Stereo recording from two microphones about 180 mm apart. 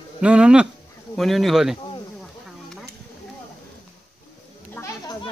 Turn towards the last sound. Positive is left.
turn(degrees=10)  # may be behind; listen again after turning